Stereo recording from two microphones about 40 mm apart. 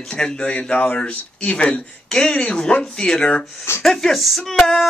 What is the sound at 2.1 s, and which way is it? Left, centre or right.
Speech, centre.